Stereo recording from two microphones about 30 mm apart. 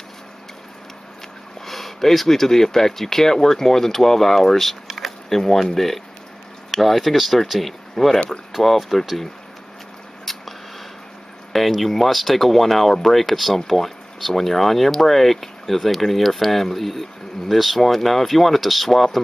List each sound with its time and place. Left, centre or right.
1.7 s speech: centre
4.9 s a sound: centre
5.4 s speech: centre
6.8 s speech: centre
10.3 s scissors: centre
11.5 s speech: centre